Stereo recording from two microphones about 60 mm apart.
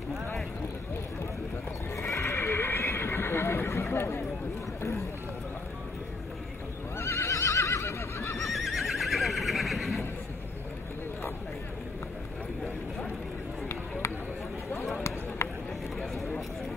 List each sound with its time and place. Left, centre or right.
2.0 s horse: left
7.0 s neigh: left
8.5 s neigh: centre
16.0 s a sound: centre